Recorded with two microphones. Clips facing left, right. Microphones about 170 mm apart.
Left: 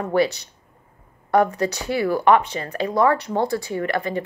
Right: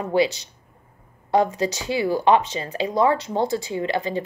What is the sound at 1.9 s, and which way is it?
Speech, 25° right (ahead or behind).